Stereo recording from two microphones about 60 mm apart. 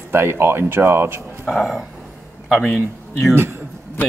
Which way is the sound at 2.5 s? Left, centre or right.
Centre.